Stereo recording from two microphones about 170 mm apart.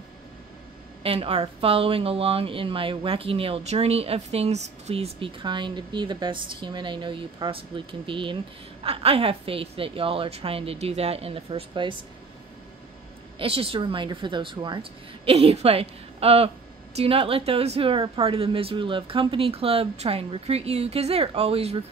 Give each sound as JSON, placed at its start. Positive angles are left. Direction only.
{"t": 1.0, "sound": "a woman's voice", "side_deg": -35}
{"t": 13.4, "sound": "a woman's voice", "side_deg": -35}